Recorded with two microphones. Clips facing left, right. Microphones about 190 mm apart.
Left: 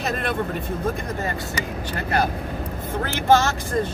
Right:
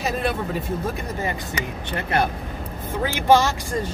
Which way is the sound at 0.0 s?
10° right (ahead or behind).